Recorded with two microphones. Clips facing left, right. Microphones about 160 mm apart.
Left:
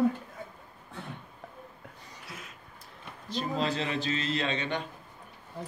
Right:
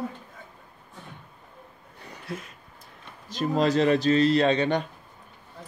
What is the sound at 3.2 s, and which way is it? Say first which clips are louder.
A man's voice: right 7 dB; 45° right (ahead or behind).